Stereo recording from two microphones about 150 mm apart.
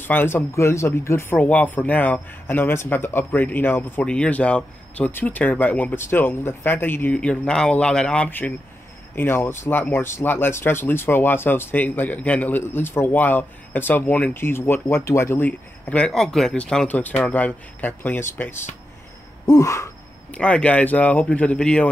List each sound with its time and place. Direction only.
0.0 s speech: 15° left (ahead or behind)
19.4 s a sound: 20° left (ahead or behind)
20.2 s speech: 10° left (ahead or behind)